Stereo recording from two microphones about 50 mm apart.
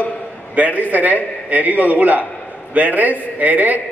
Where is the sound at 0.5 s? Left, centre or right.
Right.